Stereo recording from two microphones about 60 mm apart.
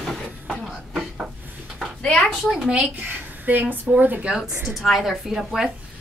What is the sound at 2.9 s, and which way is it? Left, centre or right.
A woman's voice, right.